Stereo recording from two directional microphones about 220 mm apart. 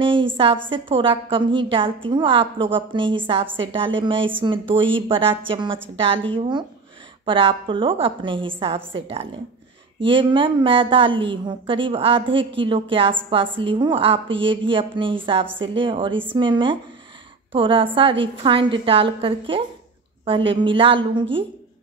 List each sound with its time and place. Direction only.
0.0 s a woman's voice: 25° right (ahead or behind)